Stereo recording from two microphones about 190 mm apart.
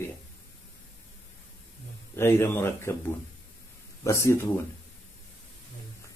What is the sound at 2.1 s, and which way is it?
Speech, 15° left (ahead or behind).